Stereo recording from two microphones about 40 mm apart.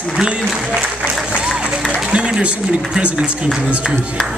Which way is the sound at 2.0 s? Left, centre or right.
Right.